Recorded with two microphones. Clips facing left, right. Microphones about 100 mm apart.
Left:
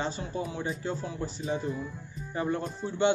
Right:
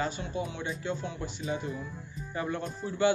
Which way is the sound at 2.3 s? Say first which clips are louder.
Left 3 dB; 30° left (ahead or behind).